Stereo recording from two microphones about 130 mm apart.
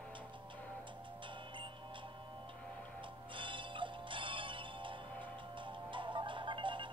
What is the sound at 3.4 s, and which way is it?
Music, 40° right (ahead or behind).